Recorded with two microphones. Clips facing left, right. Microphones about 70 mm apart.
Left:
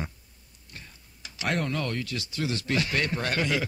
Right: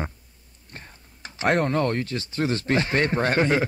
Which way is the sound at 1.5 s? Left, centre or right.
Right.